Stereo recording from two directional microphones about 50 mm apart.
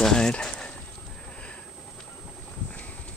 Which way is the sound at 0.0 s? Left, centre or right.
Centre.